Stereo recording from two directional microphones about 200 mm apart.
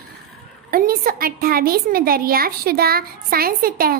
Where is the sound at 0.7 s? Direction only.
45° right (ahead or behind).